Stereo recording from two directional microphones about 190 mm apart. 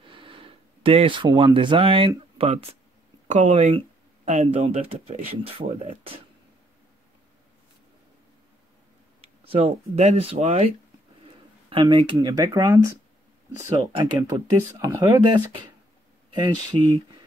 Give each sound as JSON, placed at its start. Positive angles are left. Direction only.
{"t": 0.0, "sound": "speech", "side_deg": -25}
{"t": 9.4, "sound": "speech", "side_deg": -30}
{"t": 11.7, "sound": "speech", "side_deg": -25}
{"t": 13.9, "sound": "speech", "side_deg": -20}